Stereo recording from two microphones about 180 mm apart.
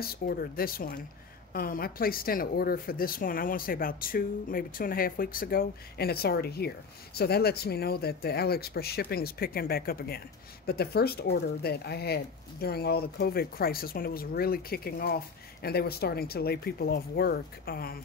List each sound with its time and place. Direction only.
0.0 s speech: 55° left (ahead or behind)